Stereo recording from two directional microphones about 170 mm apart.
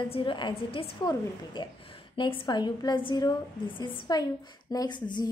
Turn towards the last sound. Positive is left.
turn(degrees=25)  # may be behind; listen again after turning